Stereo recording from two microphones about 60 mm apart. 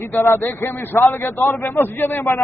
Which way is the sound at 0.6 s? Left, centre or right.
Left.